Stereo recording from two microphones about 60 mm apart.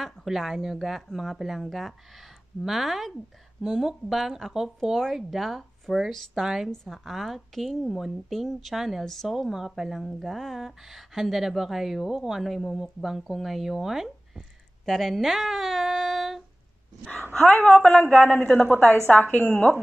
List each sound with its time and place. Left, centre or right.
0.0 s a woman's voice: centre
9.3 s speech: centre
14.9 s a sound: centre
17.3 s a woman's voice: centre; by 19.4 s left